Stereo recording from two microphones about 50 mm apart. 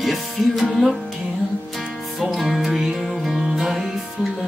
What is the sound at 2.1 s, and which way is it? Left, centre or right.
Music, centre.